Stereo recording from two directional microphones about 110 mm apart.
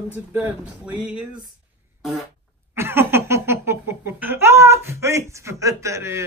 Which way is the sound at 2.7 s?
20° right (ahead or behind).